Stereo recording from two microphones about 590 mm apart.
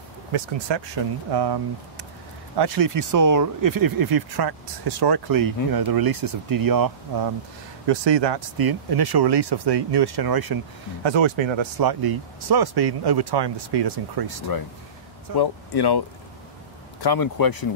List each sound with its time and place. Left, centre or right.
0.3 s speech: right
11.1 s speech: right
11.8 s speech: right
15.3 s speech: left
17.0 s speech: left